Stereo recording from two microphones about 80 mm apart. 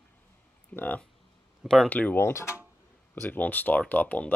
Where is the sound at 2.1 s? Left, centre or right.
Left.